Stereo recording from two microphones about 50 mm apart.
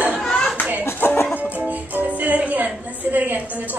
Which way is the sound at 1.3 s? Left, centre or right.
Right.